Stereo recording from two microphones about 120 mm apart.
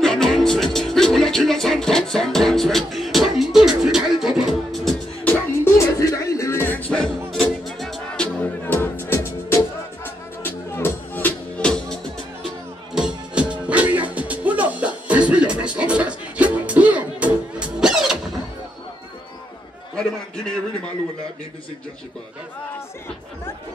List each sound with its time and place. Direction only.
0.0 s music: 5° left (ahead or behind)
5.2 s music: 20° left (ahead or behind)
12.9 s music: 5° right (ahead or behind)